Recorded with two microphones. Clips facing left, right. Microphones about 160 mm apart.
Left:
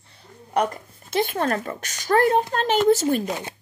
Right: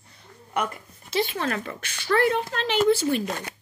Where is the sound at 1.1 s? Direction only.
50° left (ahead or behind).